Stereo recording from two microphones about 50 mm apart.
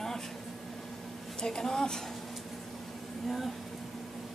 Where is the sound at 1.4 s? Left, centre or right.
Centre.